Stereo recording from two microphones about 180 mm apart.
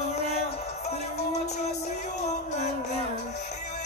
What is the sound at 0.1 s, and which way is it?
Music, 35° left (ahead or behind).